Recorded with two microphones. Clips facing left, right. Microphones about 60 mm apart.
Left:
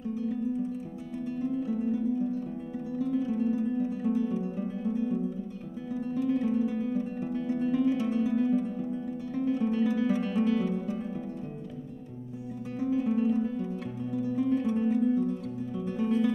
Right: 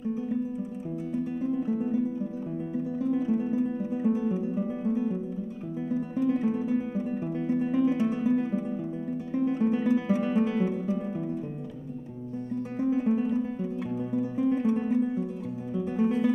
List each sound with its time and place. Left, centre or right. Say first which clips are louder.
0.0 s music: right 2 dB; centre
1.1 s guitar: right 2 dB; centre
3.0 s guitar: right 1 dB; centre
6.2 s guitar: even; centre
9.5 s music: right 1 dB; centre
12.9 s guitar: left 1 dB; centre
14.1 s music: even; centre